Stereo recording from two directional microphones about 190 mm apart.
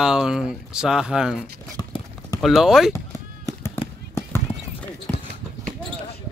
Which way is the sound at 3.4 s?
15° left (ahead or behind).